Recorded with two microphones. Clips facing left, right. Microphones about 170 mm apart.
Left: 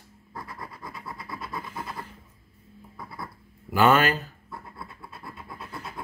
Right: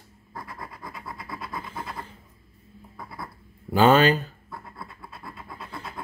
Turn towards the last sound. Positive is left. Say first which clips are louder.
# right 1 dB
turn(degrees=0)  # may be behind; listen again after turning